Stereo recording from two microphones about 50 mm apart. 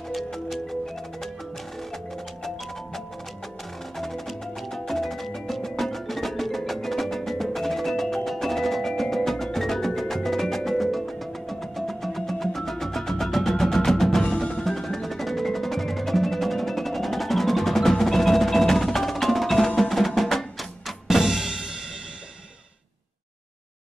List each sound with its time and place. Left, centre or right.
0.1 s music: centre
4.0 s music: centre
14.2 s music: centre
14.6 s music: centre